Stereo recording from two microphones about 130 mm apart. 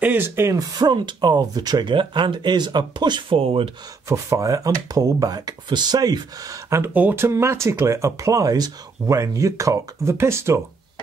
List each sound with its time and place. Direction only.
0.0 s speech: 15° right (ahead or behind); by 3.7 s 45° right (ahead or behind)
4.1 s speech: 25° right (ahead or behind)